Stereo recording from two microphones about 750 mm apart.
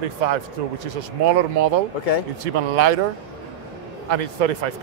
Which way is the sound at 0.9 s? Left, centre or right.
Right.